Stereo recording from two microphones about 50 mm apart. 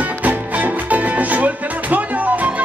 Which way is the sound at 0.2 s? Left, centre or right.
Right.